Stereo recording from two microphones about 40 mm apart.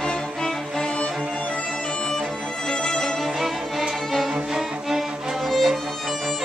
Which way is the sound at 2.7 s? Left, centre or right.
Left.